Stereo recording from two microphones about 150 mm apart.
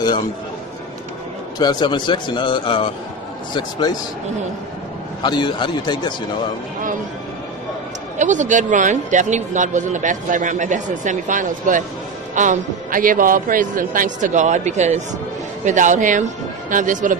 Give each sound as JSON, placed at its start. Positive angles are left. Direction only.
{"t": 1.6, "sound": "a man's voice", "side_deg": 30}
{"t": 5.2, "sound": "a man's voice", "side_deg": 30}
{"t": 8.2, "sound": "speech", "side_deg": -55}